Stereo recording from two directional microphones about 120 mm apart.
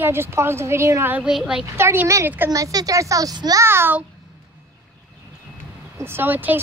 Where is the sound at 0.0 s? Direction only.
20° right (ahead or behind).